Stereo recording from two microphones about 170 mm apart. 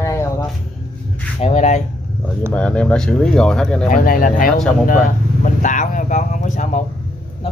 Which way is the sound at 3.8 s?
55° left (ahead or behind).